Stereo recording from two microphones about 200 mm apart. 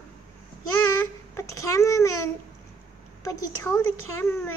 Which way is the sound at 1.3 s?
15° left (ahead or behind).